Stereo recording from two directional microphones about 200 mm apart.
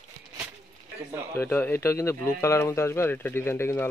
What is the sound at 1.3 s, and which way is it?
Speech, 10° left (ahead or behind).